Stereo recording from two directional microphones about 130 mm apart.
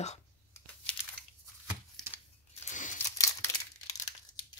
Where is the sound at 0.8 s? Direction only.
10° left (ahead or behind).